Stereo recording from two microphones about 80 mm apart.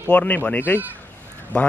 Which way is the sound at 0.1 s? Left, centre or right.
Left.